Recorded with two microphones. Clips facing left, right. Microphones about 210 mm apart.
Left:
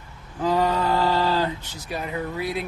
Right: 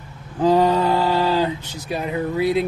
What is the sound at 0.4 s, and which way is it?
Speech, 30° right (ahead or behind).